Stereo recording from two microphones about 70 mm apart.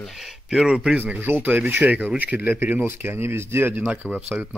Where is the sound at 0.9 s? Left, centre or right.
Right.